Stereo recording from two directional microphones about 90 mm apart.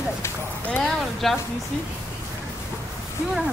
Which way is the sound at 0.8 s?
Centre (ahead or behind).